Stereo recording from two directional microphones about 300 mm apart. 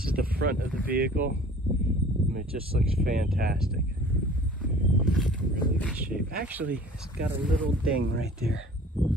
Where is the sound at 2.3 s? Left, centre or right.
Right.